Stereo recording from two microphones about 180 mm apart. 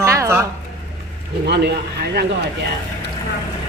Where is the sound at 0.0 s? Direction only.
15° right (ahead or behind).